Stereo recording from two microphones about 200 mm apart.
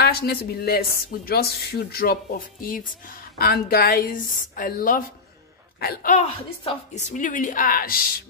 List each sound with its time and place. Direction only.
0.0 s speech: 50° left (ahead or behind)
6.1 s a woman's voice: 30° left (ahead or behind); by 8.0 s 45° left (ahead or behind)